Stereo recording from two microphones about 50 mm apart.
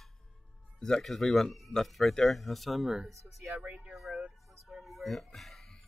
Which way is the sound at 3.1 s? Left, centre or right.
Right.